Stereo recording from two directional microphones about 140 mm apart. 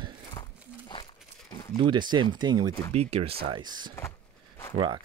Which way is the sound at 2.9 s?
50° right (ahead or behind).